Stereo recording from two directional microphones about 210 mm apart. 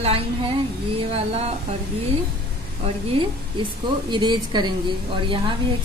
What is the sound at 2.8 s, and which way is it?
A woman's voice, 30° right (ahead or behind).